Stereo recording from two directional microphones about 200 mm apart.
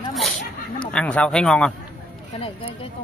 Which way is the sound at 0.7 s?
5° left (ahead or behind).